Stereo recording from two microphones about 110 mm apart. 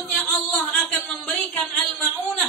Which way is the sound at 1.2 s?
10° left (ahead or behind).